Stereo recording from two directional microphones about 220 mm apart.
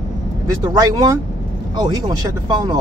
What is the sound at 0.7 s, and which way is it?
Speech, 15° right (ahead or behind).